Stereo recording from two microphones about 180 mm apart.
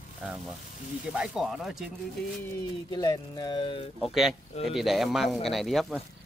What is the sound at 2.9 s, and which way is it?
Speech, 20° left (ahead or behind).